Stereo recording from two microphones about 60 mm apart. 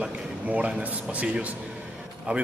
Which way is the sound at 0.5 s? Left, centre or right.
Right.